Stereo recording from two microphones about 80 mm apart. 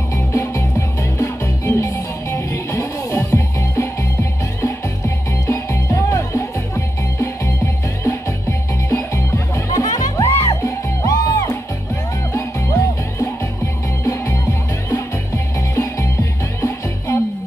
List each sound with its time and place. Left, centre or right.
0.1 s music: left
9.7 s music: left
10.2 s music: left
12.3 s music: left
14.9 s music: left